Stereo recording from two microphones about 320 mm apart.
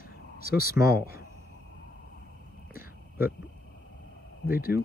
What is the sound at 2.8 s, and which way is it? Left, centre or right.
Whispering, centre.